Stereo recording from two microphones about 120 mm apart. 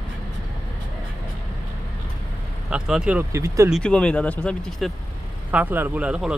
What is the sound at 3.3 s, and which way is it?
Speech, 25° right (ahead or behind).